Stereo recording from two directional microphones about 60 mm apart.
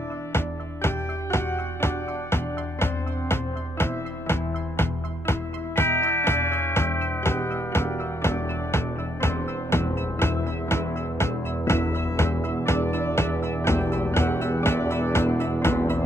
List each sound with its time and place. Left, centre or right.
0.8 s music: left